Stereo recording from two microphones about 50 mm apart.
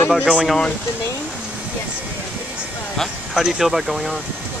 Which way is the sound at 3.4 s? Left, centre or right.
Centre.